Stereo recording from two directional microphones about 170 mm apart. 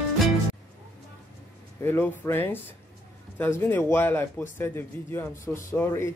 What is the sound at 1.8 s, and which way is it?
Speech, 10° left (ahead or behind).